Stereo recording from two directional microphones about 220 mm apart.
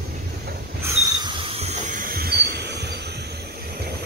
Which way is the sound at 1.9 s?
45° right (ahead or behind).